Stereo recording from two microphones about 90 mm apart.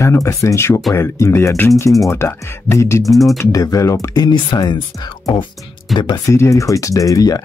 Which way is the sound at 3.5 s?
40° left (ahead or behind).